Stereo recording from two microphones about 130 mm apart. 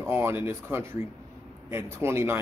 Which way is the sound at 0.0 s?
20° right (ahead or behind).